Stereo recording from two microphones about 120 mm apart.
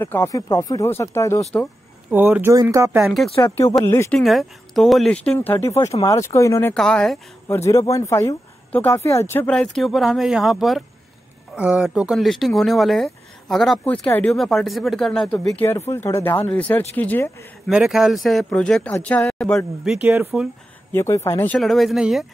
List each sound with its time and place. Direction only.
0.0 s speech: 20° left (ahead or behind)
2.0 s speech: 15° right (ahead or behind)
2.5 s speech: 30° right (ahead or behind)
3.0 s speech: 5° right (ahead or behind)
3.3 s speech: 20° left (ahead or behind)
4.1 s speech: centre (ahead or behind); by 6.7 s 25° left (ahead or behind)
6.7 s speech: 5° left (ahead or behind)
7.4 s speech: 20° left (ahead or behind)
9.5 s speech: 5° left (ahead or behind)
15.3 s speech: 20° left (ahead or behind)
17.6 s speech: 5° right (ahead or behind)
19.8 s speech: 5° right (ahead or behind)
20.9 s speech: 20° left (ahead or behind)
21.5 s speech: centre (ahead or behind)